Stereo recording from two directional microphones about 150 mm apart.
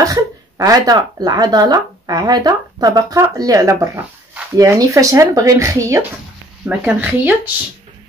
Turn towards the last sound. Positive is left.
turn(degrees=-10)  # may be behind; listen again after turning